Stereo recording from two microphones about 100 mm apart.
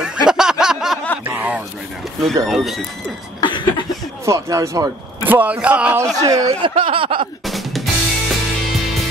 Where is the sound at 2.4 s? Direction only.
Centre (ahead or behind).